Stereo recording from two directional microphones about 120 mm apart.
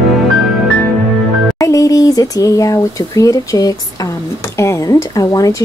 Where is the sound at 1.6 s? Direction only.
30° left (ahead or behind).